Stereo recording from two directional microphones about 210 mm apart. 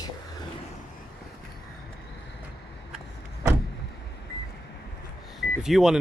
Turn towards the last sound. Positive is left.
turn(degrees=0)  # may be behind; listen again after turning